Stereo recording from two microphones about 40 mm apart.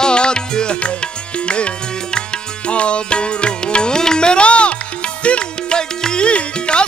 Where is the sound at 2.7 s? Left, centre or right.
Left.